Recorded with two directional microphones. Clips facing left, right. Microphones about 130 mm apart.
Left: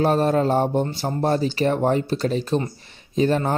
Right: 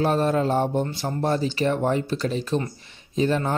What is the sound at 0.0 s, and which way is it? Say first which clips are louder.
Speech: left 3 dB; 40° left (ahead or behind).